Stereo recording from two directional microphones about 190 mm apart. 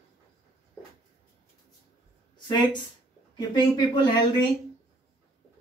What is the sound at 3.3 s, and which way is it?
Speech, 25° left (ahead or behind).